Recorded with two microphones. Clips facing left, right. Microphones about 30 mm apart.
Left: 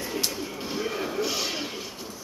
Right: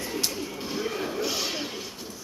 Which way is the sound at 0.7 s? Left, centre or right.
Centre.